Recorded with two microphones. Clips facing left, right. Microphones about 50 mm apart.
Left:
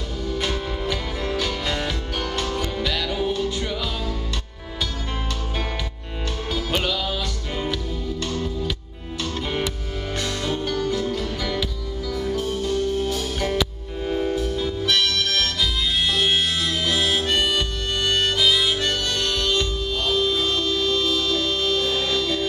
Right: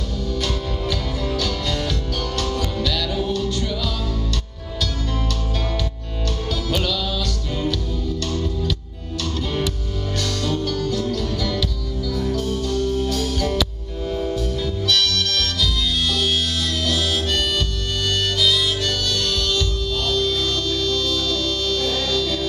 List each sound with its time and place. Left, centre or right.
0.3 s music: centre
6.7 s music: left
8.3 s music: centre
10.2 s music: centre
16.8 s harmonica: centre